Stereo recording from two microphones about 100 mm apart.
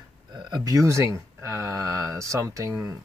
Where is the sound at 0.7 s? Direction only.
30° right (ahead or behind).